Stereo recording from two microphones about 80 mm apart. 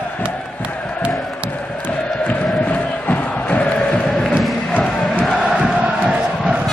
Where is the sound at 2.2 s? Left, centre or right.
Centre.